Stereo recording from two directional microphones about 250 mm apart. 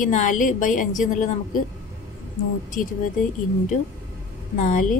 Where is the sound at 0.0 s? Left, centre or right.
Left.